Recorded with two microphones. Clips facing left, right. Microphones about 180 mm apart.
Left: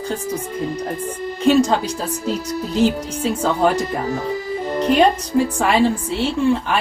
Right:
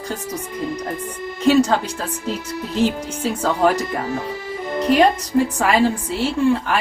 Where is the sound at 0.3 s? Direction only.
35° left (ahead or behind).